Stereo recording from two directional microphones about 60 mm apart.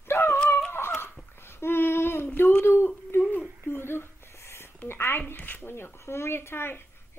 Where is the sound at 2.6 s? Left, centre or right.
Left.